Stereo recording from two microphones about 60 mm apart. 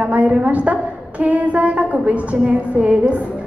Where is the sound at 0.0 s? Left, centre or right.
Right.